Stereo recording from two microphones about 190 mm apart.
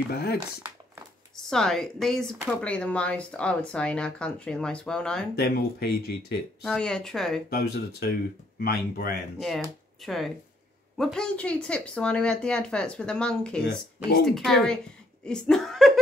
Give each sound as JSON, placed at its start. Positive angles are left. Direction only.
{"t": 0.1, "sound": "speech", "side_deg": 55}
{"t": 1.3, "sound": "speech", "side_deg": 5}
{"t": 5.3, "sound": "speech", "side_deg": 55}
{"t": 6.6, "sound": "speech", "side_deg": 5}
{"t": 7.4, "sound": "speech", "side_deg": 55}
{"t": 10.0, "sound": "speech", "side_deg": 0}